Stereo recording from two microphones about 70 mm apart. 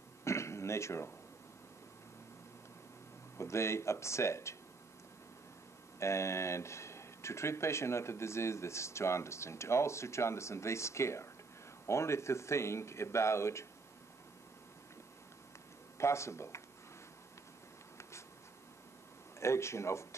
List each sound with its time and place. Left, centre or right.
0.2 s a sound: left
3.3 s speech: left
5.9 s speech: left
16.0 s speech: left
19.4 s speech: left